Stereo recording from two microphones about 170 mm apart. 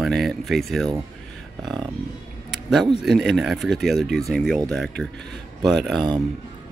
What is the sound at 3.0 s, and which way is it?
Speech, centre (ahead or behind).